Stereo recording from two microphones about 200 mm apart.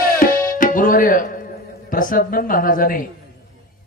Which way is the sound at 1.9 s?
40° left (ahead or behind).